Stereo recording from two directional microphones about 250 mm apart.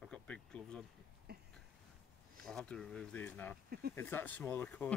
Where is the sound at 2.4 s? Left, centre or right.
Centre.